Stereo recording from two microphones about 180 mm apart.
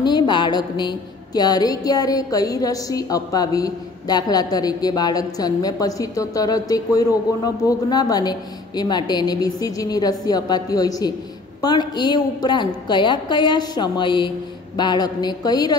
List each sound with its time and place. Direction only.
0.0 s a woman's voice: 25° left (ahead or behind)